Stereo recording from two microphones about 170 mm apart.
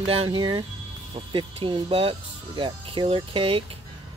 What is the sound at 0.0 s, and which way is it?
Speech, 35° right (ahead or behind).